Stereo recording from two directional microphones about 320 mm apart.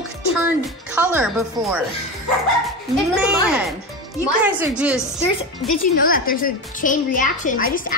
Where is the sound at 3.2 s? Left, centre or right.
Centre.